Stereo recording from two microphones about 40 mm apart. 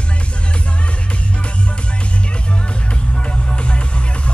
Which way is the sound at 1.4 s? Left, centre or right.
Left.